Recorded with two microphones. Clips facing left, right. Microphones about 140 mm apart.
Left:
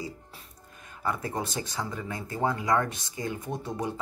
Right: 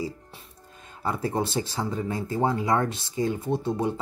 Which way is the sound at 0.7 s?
25° right (ahead or behind).